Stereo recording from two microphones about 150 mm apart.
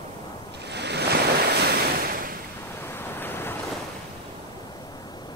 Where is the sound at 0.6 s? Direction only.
90° right.